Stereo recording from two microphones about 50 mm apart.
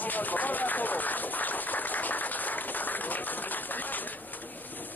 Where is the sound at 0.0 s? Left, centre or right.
Left.